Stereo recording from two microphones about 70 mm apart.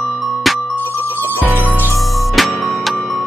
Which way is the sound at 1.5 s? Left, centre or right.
Right.